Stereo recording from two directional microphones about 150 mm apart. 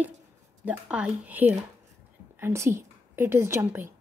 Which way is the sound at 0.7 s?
5° right (ahead or behind).